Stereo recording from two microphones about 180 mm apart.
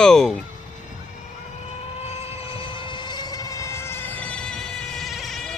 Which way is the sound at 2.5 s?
30° left (ahead or behind).